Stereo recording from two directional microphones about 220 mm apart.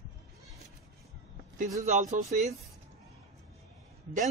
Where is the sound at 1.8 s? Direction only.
30° right (ahead or behind).